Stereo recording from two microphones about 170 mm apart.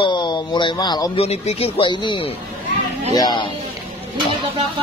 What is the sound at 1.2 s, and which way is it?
Speech, 35° left (ahead or behind).